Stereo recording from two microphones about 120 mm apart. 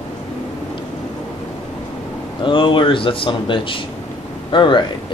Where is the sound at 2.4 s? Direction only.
45° left (ahead or behind).